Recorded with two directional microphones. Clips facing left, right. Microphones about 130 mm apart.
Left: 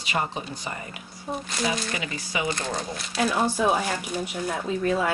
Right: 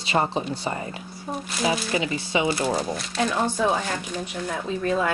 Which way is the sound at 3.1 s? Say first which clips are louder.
Left 1 dB; 10° left (ahead or behind).